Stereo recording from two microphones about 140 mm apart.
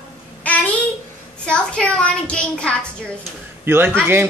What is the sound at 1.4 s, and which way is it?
A child's voice, 10° left (ahead or behind).